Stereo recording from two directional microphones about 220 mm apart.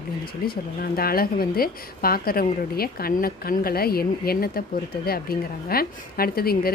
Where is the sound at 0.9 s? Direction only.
45° left (ahead or behind).